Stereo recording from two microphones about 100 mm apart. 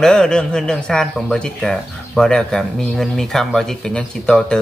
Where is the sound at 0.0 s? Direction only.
10° left (ahead or behind).